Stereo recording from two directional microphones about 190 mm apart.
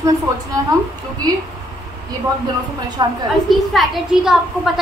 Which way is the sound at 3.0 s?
20° right (ahead or behind).